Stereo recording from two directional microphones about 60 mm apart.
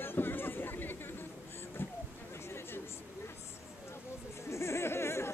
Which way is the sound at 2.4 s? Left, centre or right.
Left.